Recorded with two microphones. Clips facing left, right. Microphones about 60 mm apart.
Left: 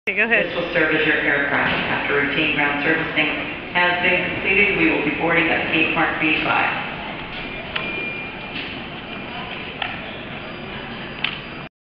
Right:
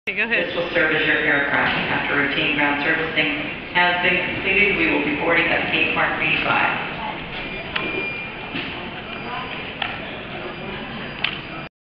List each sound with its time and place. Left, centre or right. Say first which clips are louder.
0.6 s a man's voice: left 1 dB; centre
3.2 s a man's voice: left 1 dB; left
3.7 s a man's voice: even; centre